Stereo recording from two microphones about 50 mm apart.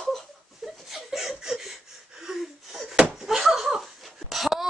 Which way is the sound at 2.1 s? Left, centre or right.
Centre.